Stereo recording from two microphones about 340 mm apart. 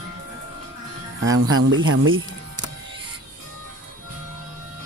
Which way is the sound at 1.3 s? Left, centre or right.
Right.